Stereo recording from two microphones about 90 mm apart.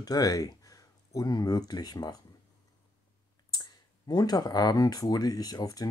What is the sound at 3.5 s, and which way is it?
Speech, 50° left (ahead or behind).